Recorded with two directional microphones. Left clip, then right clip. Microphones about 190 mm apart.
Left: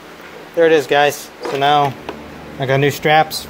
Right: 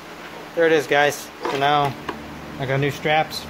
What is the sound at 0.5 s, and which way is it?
Speech, 15° left (ahead or behind).